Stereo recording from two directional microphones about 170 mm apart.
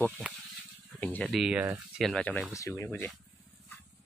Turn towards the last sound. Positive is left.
turn(degrees=15)  # may be behind; listen again after turning